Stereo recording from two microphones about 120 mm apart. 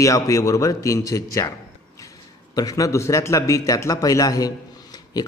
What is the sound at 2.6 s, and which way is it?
A man's voice, 30° left (ahead or behind).